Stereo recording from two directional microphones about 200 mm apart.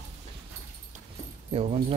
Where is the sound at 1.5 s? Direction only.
30° right (ahead or behind).